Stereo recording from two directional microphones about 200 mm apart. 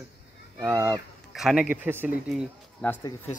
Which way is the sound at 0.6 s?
10° right (ahead or behind).